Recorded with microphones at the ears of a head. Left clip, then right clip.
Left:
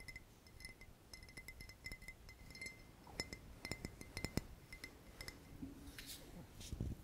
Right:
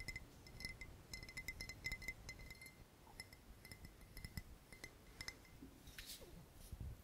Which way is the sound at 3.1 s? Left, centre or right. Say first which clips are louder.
Left 11 dB; left.